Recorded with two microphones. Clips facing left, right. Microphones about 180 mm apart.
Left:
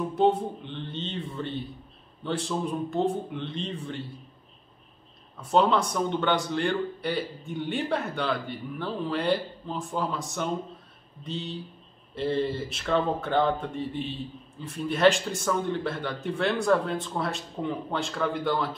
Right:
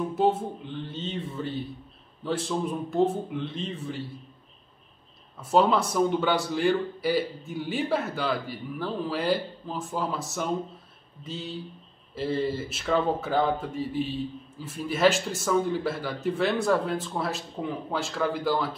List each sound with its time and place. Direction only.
0.1 s speech: 5° right (ahead or behind)
5.4 s speech: 5° right (ahead or behind)